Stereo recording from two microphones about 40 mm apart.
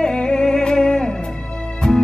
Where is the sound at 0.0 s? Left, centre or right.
Left.